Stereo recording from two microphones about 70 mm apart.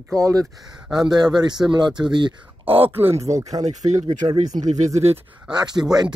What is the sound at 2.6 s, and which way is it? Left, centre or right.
Speech, right.